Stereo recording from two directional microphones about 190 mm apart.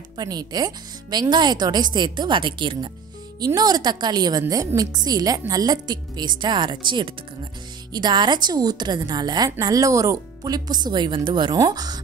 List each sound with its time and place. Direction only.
0.2 s a woman's voice: 20° right (ahead or behind)